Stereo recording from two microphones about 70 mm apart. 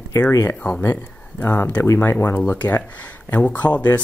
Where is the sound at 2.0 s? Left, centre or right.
Left.